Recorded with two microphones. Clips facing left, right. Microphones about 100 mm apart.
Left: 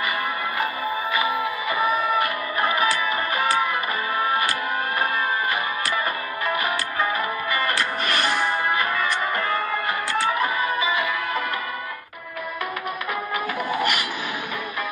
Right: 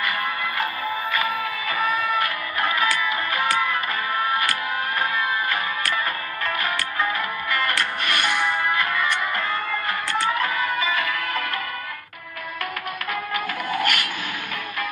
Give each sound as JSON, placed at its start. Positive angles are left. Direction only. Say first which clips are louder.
{"t": 1.7, "sound": "music", "louder": "left 1 dB", "side_deg": 15}
{"t": 6.4, "sound": "music", "louder": "left 2 dB", "side_deg": 15}
{"t": 7.7, "sound": "music", "louder": "left 1 dB", "side_deg": 35}
{"t": 8.6, "sound": "music", "louder": "even", "side_deg": 20}
{"t": 10.4, "sound": "music", "louder": "left 1 dB", "side_deg": 15}
{"t": 13.7, "sound": "music", "louder": "right 1 dB", "side_deg": 10}